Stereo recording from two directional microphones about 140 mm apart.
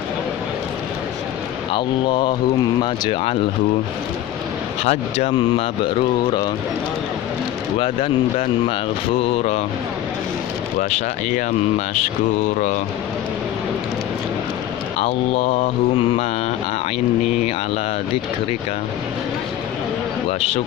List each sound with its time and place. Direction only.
1.7 s speech: 35° left (ahead or behind)
4.8 s speech: 50° left (ahead or behind)
7.8 s mantra: 40° left (ahead or behind)
10.8 s speech: 60° left (ahead or behind)
15.0 s mantra: 50° left (ahead or behind)
20.2 s mantra: 50° left (ahead or behind)